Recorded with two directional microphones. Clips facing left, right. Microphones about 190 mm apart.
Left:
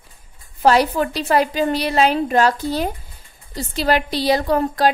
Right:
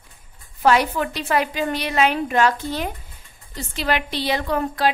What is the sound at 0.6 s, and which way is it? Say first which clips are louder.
A woman's voice: left 3 dB; 35° left (ahead or behind).